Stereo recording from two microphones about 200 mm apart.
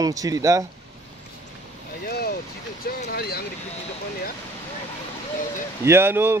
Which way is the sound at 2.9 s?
45° left (ahead or behind).